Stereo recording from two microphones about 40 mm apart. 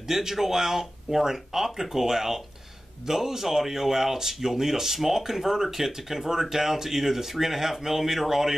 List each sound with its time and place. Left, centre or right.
0.1 s speech: centre